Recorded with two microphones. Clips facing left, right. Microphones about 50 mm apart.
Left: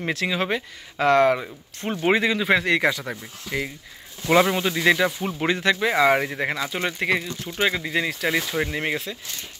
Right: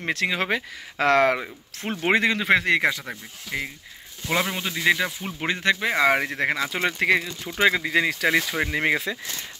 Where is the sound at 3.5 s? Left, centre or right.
Centre.